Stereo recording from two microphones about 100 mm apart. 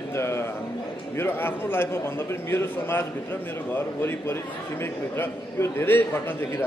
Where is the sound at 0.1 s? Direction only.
25° left (ahead or behind).